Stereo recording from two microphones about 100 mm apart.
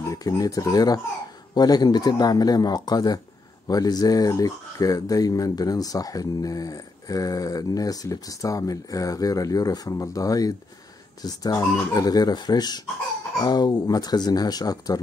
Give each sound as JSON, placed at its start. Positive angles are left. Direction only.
{"t": 0.1, "sound": "speech", "side_deg": 35}